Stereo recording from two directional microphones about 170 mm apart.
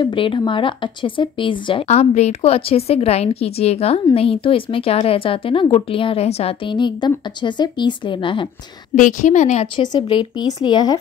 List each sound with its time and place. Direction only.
0.0 s speech: 30° left (ahead or behind)
8.9 s a woman's voice: 45° left (ahead or behind)
9.8 s speech: 30° left (ahead or behind)